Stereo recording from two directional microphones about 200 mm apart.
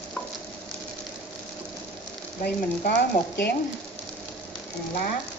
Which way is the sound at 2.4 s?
55° left (ahead or behind).